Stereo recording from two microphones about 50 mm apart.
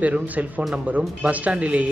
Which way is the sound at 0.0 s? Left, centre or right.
Right.